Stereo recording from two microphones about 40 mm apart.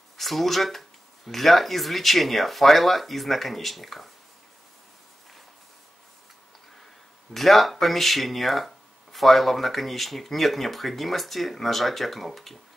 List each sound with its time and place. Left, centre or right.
0.2 s speech: centre
7.3 s speech: centre